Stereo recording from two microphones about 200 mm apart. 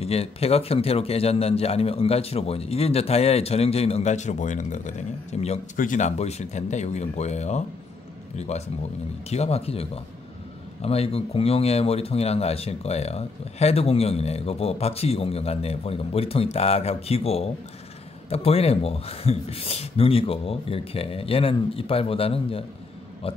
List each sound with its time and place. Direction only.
0.0 s a man's voice: 30° left (ahead or behind)